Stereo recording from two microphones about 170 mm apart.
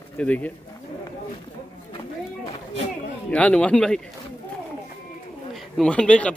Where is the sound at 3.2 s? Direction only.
5° left (ahead or behind).